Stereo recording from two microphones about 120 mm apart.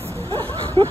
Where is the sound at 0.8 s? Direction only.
50° right (ahead or behind).